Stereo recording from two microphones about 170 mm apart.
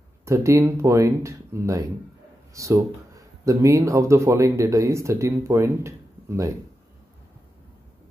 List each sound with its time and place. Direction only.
0.2 s speech: 15° right (ahead or behind)